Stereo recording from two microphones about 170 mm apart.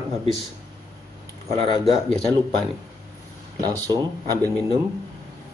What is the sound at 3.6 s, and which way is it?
Speech, 25° right (ahead or behind).